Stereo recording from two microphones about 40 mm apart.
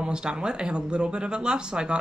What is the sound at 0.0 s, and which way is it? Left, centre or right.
Speech, right.